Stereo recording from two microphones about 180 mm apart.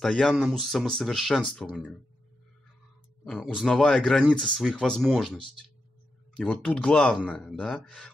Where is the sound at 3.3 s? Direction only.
Centre (ahead or behind).